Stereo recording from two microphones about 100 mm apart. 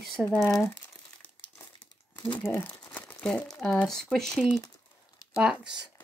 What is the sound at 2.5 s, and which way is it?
Crumpling, 15° left (ahead or behind).